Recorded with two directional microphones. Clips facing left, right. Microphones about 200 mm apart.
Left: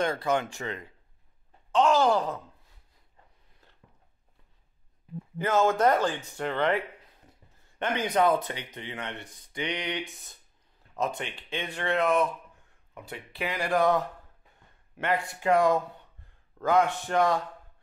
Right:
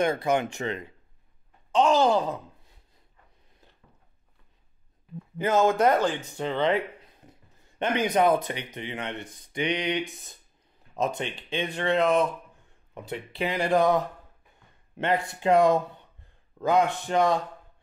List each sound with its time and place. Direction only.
0.0 s speech: 20° right (ahead or behind)
5.4 s speech: 15° right (ahead or behind)
7.8 s speech: 15° right (ahead or behind)